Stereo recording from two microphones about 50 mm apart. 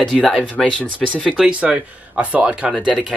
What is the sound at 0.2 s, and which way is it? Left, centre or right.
Speech, centre.